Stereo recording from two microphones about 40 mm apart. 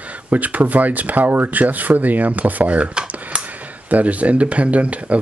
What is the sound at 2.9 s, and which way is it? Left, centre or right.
Dishes, right.